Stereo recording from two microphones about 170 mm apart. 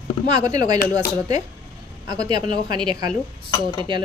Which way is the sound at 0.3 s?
20° right (ahead or behind).